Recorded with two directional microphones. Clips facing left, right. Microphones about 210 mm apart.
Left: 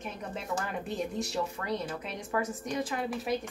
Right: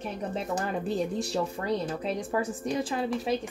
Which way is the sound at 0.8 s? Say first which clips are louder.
Right 5 dB; 35° right (ahead or behind).